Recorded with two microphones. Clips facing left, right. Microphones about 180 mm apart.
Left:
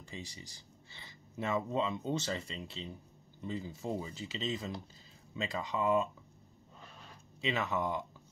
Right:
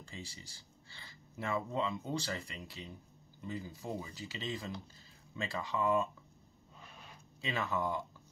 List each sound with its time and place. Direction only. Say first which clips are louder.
0.0 s speech: left 2 dB; 20° left (ahead or behind)
7.4 s speech: left 2 dB; 20° left (ahead or behind)